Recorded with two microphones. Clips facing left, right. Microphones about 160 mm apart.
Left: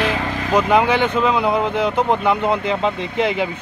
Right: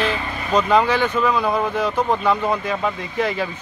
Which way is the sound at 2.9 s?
65° left (ahead or behind).